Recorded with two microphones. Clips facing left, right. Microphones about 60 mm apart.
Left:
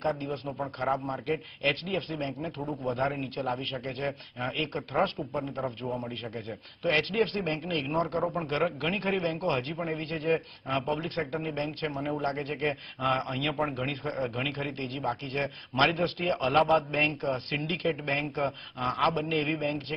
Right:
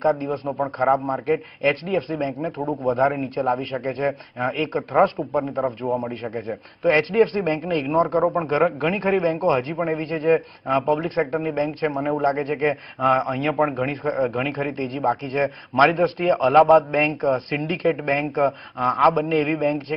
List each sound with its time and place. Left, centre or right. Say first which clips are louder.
0.9 s a man's voice: right 9 dB; right
5.3 s a man's voice: right 10 dB; right
6.3 s a man's voice: right 9 dB; right
8.5 s a man's voice: right 6 dB; right
13.2 s a man's voice: right 8 dB; right
13.5 s a man's voice: right 9 dB; right